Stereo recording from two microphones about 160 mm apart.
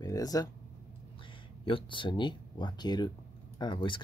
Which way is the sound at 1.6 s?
30° left (ahead or behind).